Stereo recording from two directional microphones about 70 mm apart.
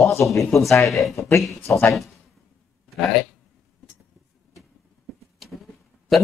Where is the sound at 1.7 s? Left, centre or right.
Left.